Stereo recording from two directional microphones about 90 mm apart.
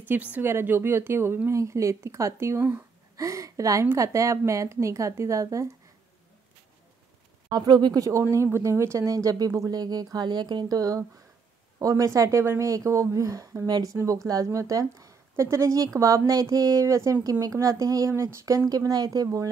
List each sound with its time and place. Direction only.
0.0 s speech: 20° right (ahead or behind); by 5.7 s 35° right (ahead or behind)
7.4 s speech: 50° right (ahead or behind)
8.1 s speech: 30° right (ahead or behind)
13.7 s speech: 50° right (ahead or behind)
13.9 s speech: 35° right (ahead or behind)